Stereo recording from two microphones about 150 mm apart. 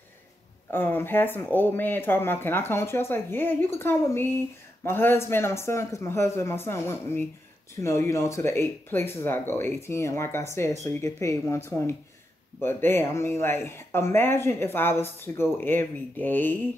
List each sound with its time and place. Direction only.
0.7 s speech: 15° left (ahead or behind)